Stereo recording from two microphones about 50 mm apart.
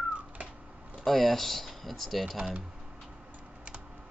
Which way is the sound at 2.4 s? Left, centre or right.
Centre.